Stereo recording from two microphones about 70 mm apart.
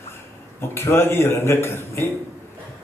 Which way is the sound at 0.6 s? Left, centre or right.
Left.